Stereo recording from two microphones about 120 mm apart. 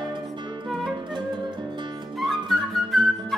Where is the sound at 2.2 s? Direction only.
Centre (ahead or behind).